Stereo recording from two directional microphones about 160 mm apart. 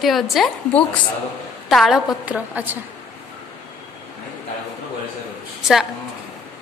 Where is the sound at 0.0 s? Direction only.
Centre (ahead or behind).